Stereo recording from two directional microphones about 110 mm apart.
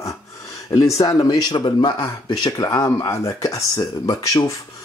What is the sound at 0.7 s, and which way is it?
Speech, 30° left (ahead or behind).